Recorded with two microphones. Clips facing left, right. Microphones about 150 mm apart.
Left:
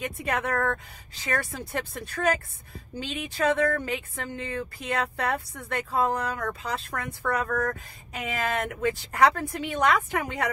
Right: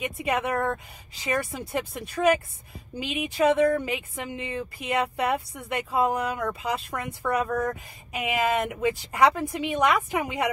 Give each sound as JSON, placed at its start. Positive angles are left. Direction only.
{"t": 0.0, "sound": "speech", "side_deg": -5}
{"t": 7.4, "sound": "speech", "side_deg": -25}
{"t": 8.1, "sound": "speech", "side_deg": -10}